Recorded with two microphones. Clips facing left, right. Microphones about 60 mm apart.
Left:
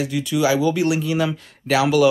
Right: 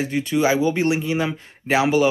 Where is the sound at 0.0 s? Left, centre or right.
Right.